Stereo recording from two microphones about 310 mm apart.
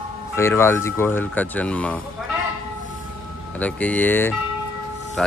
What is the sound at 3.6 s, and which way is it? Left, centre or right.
Speech, centre.